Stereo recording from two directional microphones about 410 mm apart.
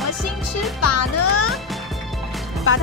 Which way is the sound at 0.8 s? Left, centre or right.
Left.